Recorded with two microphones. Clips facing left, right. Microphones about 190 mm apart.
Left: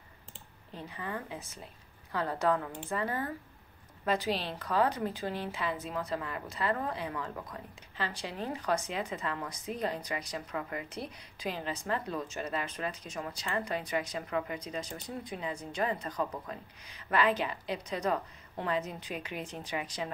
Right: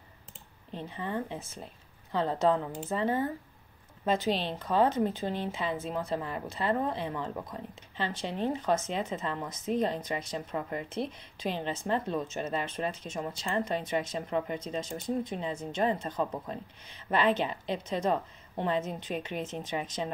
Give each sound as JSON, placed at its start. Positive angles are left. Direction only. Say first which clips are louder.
{"t": 0.7, "sound": "a woman's voice", "louder": "right 5 dB", "side_deg": -25}